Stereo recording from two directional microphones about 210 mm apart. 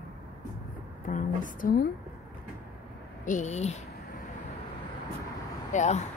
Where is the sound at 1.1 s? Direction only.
40° left (ahead or behind).